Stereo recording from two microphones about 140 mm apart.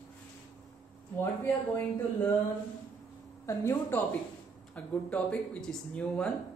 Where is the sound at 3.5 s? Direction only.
20° left (ahead or behind).